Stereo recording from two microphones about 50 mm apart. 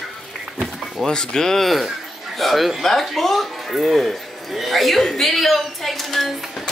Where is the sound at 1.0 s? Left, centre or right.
Centre.